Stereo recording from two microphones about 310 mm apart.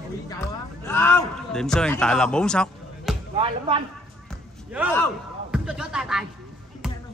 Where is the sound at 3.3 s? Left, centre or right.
Centre.